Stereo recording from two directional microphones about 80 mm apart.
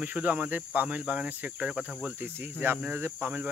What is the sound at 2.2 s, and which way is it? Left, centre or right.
Speech, right.